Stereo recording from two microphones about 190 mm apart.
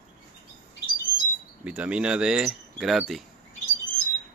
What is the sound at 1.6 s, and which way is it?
Speech, 5° right (ahead or behind).